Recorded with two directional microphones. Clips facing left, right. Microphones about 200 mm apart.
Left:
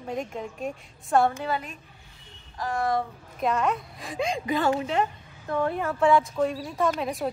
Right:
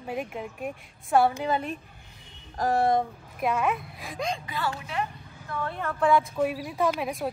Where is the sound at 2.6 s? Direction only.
40° right (ahead or behind).